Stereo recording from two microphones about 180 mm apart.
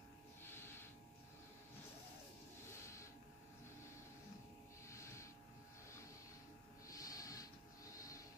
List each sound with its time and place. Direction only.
0.4 s a sound: 15° left (ahead or behind)
4.8 s snort: 15° left (ahead or behind)
6.9 s snort: 20° left (ahead or behind)